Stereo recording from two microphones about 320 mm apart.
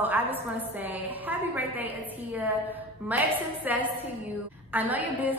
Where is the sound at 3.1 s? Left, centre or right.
Centre.